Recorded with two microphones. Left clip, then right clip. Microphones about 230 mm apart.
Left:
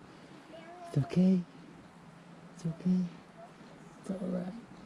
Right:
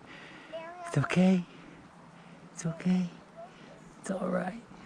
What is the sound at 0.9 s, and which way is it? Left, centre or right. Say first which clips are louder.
Speech: right 4 dB; centre.